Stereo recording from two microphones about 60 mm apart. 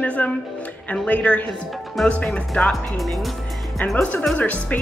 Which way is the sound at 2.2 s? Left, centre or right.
Centre.